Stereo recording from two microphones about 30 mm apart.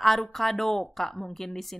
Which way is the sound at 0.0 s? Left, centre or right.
Centre.